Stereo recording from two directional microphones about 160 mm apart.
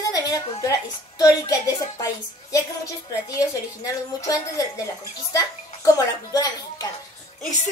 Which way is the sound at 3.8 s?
20° left (ahead or behind).